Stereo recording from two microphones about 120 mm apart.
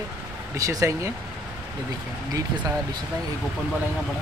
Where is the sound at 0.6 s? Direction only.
25° right (ahead or behind).